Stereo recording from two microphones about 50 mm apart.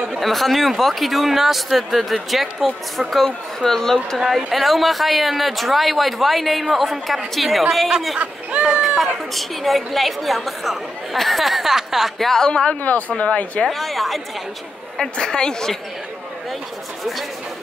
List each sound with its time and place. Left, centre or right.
0.1 s speech: centre
8.2 s speech: right
8.8 s a sound: centre
9.3 s speech: centre
12.3 s speech: centre
13.7 s speech: centre
15.0 s speech: centre